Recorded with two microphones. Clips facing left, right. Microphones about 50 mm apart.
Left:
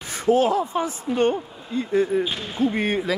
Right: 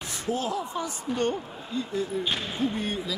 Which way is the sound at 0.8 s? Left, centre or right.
Left.